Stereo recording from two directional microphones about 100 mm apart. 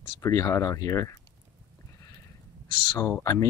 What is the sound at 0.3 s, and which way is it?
Speech, 35° left (ahead or behind).